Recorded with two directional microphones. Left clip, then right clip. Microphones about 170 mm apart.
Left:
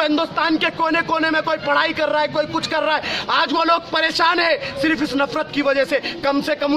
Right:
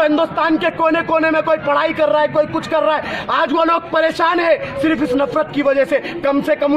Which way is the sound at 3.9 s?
35° left (ahead or behind).